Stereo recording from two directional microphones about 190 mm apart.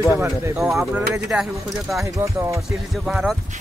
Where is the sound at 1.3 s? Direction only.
Centre (ahead or behind).